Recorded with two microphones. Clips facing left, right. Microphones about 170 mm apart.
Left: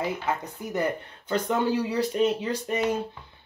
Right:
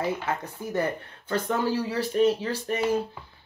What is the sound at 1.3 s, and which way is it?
Speech, 20° left (ahead or behind).